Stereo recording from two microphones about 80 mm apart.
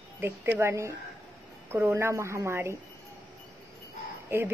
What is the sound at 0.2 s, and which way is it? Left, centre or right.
A woman's voice, right.